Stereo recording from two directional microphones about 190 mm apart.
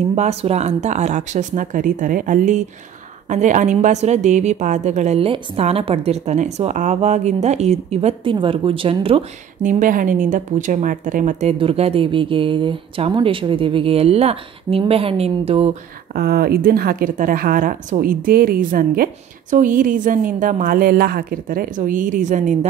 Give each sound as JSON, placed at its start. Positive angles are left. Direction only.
{"t": 0.1, "sound": "a woman's voice", "side_deg": -35}
{"t": 16.2, "sound": "a woman's voice", "side_deg": -55}